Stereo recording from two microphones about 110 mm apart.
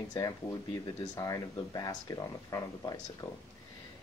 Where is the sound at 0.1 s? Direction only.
35° left (ahead or behind).